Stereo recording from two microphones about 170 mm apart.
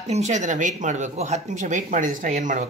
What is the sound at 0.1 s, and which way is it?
Speech, 45° right (ahead or behind).